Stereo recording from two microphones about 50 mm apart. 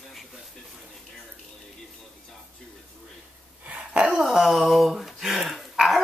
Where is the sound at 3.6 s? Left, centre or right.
Right.